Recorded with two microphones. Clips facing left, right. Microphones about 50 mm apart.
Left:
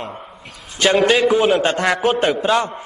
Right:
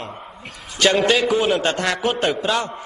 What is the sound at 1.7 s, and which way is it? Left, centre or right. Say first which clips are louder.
Speech: left 4 dB; left.